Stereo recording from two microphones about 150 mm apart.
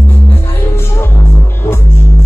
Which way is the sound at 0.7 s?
15° left (ahead or behind).